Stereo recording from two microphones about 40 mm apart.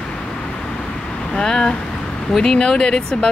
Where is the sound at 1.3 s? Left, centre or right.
Centre.